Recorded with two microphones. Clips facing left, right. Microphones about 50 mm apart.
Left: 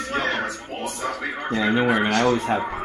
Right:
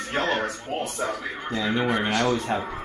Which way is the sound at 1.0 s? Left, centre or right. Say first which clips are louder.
Left 1 dB; left.